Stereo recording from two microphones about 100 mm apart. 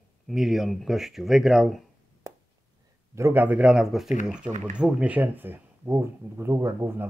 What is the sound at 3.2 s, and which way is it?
Speech, 25° right (ahead or behind).